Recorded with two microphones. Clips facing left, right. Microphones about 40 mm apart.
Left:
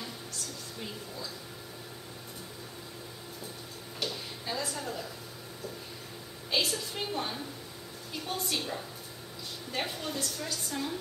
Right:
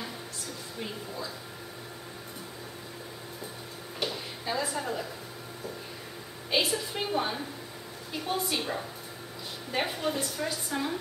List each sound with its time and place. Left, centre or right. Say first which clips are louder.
0.0 s music: right 2 dB; centre
4.0 s a sound: right 3 dB; centre
6.5 s a woman's voice: right 3 dB; centre